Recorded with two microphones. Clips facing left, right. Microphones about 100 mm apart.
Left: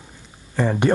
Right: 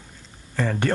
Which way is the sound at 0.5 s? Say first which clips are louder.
Left 5 dB; 15° left (ahead or behind).